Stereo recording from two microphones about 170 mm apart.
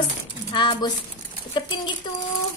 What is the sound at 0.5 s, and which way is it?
Speech, 30° left (ahead or behind).